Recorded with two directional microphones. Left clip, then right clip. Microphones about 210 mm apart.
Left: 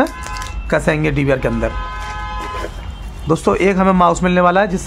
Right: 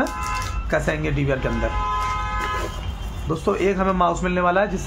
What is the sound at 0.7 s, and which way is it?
A man's voice, 45° left (ahead or behind).